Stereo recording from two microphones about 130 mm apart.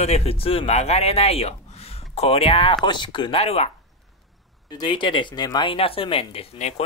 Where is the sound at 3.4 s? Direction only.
50° left (ahead or behind).